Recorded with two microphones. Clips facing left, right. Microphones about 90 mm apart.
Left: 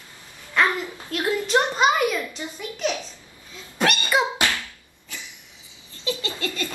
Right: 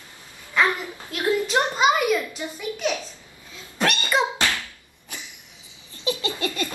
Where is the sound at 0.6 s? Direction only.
Centre (ahead or behind).